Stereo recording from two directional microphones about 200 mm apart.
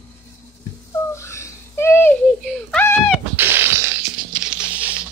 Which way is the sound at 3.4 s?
10° right (ahead or behind).